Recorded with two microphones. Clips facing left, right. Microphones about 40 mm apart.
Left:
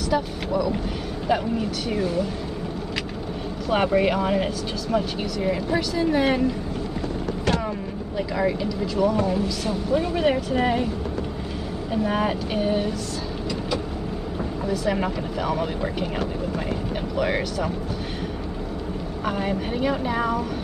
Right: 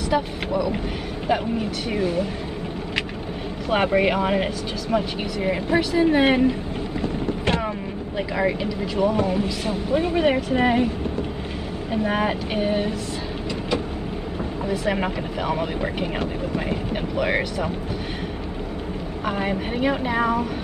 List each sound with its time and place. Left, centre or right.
0.1 s speech: centre
1.9 s speech: centre
3.7 s speech: centre
8.4 s speech: right
11.9 s speech: centre
14.7 s speech: right
17.2 s speech: right
19.2 s speech: centre